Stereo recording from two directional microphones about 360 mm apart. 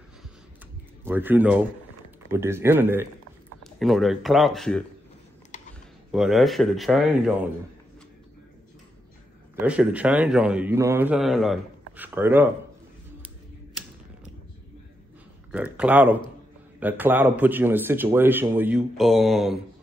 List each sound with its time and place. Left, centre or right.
1.0 s a man's voice: centre
5.5 s a sound: left
6.1 s a man's voice: centre
9.6 s a man's voice: centre
15.5 s a man's voice: centre